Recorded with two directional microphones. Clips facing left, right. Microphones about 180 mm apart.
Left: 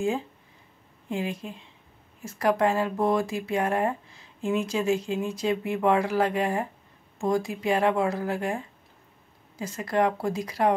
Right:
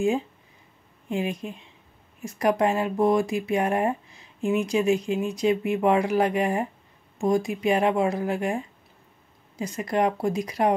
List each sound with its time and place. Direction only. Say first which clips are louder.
1.0 s speech: right 3 dB; 20° right (ahead or behind)